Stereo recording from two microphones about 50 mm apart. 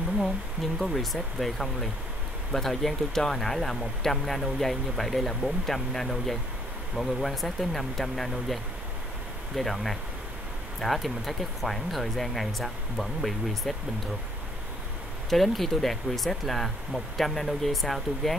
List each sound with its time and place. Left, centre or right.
0.2 s speech: centre
9.6 s speech: centre
15.2 s speech: centre